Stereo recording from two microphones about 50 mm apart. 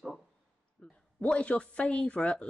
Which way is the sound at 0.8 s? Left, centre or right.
Left.